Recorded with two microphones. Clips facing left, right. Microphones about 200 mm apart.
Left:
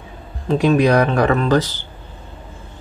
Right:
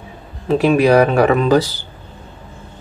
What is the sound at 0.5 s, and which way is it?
Speech, 5° right (ahead or behind).